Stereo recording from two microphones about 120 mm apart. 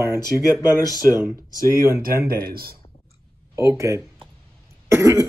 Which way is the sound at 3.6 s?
25° right (ahead or behind).